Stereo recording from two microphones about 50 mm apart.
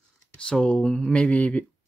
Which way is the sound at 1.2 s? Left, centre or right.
Left.